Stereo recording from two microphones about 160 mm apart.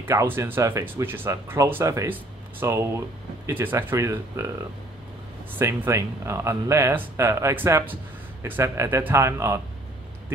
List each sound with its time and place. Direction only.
0.0 s speech: 15° right (ahead or behind)
5.6 s speech: 15° right (ahead or behind)